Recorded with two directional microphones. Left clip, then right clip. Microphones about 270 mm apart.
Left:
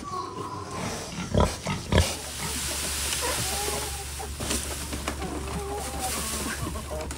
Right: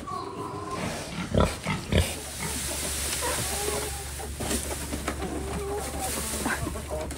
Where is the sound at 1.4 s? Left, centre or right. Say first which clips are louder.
Even; left.